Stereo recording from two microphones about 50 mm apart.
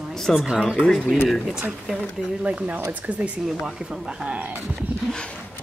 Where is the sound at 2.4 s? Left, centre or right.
Right.